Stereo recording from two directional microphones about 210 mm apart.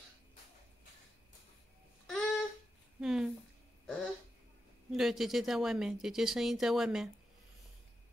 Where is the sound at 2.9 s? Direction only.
5° right (ahead or behind).